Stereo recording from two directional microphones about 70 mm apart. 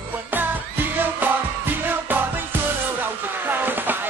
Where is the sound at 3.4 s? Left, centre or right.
Right.